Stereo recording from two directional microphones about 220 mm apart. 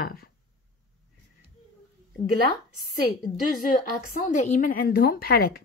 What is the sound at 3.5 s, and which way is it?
A woman's voice, 35° left (ahead or behind).